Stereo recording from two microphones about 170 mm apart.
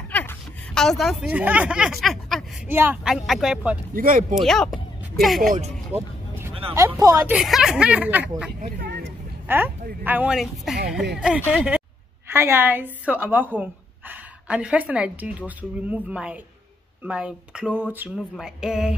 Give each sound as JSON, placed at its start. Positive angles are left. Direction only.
{"t": 0.1, "sound": "a sound", "side_deg": 10}
{"t": 1.3, "sound": "speech", "side_deg": -10}
{"t": 2.7, "sound": "speech", "side_deg": -10}
{"t": 3.9, "sound": "speech", "side_deg": -55}
{"t": 4.4, "sound": "speech", "side_deg": 0}
{"t": 5.9, "sound": "vehicle", "side_deg": -10}
{"t": 6.7, "sound": "a woman's voice", "side_deg": -15}
{"t": 7.3, "sound": "speech", "side_deg": 0}
{"t": 8.5, "sound": "speech", "side_deg": -60}
{"t": 9.5, "sound": "a woman's voice", "side_deg": -10}